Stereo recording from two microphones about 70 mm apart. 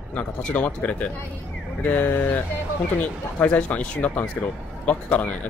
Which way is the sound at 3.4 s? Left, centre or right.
Left.